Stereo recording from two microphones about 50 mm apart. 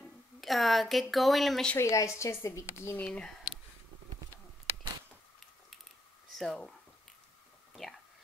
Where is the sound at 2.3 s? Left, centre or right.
Left.